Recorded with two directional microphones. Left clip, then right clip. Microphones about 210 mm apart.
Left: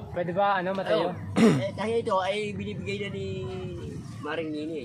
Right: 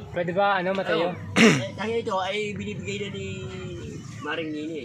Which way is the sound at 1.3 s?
5° left (ahead or behind).